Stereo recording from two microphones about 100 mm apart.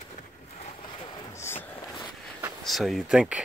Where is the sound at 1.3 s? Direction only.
25° left (ahead or behind).